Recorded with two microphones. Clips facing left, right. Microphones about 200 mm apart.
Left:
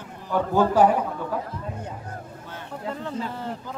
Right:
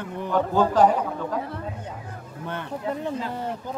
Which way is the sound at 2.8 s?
15° right (ahead or behind).